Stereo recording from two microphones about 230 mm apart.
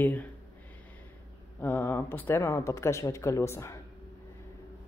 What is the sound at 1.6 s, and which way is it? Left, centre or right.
Speech, centre.